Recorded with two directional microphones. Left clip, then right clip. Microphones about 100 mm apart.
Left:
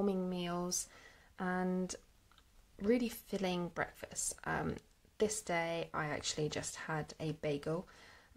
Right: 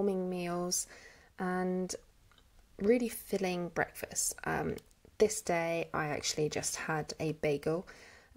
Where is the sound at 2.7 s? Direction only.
25° right (ahead or behind).